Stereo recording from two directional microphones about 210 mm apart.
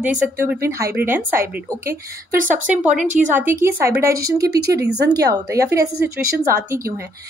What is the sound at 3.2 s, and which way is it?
Speech, 40° right (ahead or behind).